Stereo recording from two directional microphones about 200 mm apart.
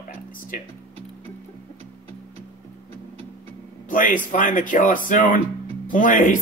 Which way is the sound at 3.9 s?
40° left (ahead or behind).